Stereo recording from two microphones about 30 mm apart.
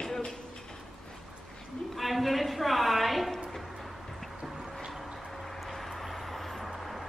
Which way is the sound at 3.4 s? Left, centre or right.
Centre.